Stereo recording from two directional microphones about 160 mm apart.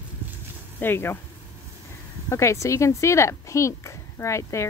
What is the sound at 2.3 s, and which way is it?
Speech, 20° left (ahead or behind).